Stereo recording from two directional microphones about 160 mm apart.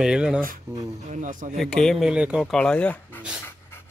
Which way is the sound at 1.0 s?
50° right (ahead or behind).